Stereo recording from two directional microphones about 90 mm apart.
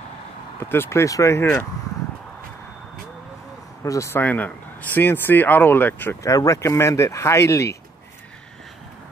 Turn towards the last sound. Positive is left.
turn(degrees=35)  # may be behind; listen again after turning